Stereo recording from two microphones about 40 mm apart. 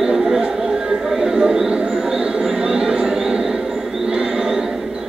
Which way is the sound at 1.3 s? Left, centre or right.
Centre.